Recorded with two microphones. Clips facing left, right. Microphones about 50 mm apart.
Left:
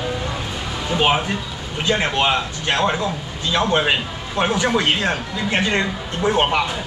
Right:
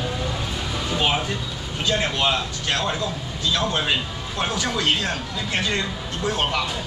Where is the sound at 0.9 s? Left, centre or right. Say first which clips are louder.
Left 5 dB; left.